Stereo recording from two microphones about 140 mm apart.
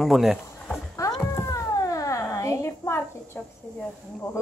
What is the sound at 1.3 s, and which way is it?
Cat, 20° left (ahead or behind).